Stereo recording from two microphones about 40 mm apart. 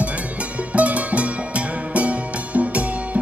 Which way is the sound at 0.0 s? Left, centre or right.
Right.